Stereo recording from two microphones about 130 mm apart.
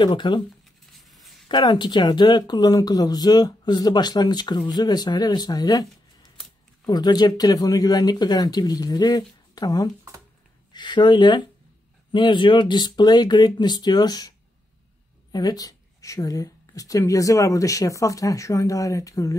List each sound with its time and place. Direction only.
0.0 s speech: 35° left (ahead or behind)
0.9 s writing: centre (ahead or behind)
1.5 s speech: 35° left (ahead or behind)
6.9 s speech: 30° left (ahead or behind)
15.3 s speech: 30° left (ahead or behind)